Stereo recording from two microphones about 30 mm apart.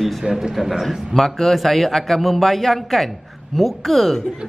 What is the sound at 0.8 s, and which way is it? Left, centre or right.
Speech, centre.